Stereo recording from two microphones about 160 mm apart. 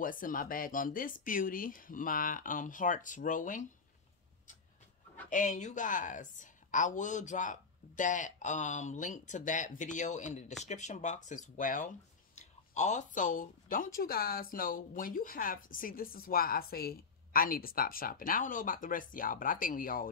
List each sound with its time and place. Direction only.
0.0 s speech: 60° left (ahead or behind)
5.3 s a woman's voice: 55° left (ahead or behind)